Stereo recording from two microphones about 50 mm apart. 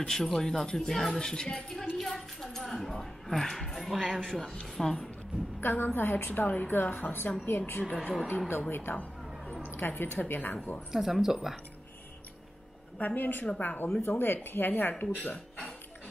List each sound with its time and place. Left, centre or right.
0.0 s speech: centre
2.0 s a woman's voice: centre
5.6 s a woman's voice: left
10.9 s speech: centre
13.0 s a woman's voice: left
14.0 s speech: left